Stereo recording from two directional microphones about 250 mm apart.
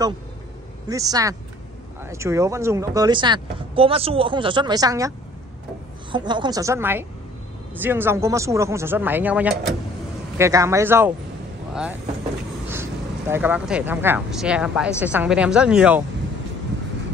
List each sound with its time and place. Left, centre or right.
0.8 s a woman's voice: centre
6.1 s speech: centre
13.3 s speech: centre